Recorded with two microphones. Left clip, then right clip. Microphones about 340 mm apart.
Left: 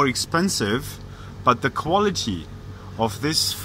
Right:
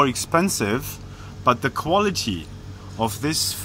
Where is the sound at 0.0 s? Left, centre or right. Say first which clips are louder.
Right 2 dB; centre.